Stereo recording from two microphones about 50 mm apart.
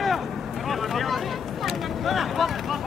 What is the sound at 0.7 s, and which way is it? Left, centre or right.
Vehicle, centre.